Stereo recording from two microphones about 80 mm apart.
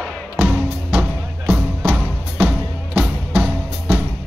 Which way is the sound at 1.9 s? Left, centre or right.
Centre.